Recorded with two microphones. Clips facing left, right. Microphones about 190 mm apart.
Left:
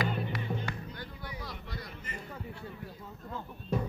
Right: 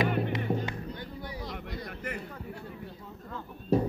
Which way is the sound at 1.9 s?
65° right (ahead or behind).